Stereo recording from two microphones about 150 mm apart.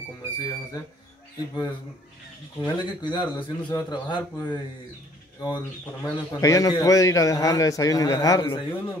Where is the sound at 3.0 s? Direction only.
30° left (ahead or behind).